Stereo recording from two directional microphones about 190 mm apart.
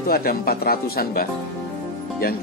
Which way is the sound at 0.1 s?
50° left (ahead or behind).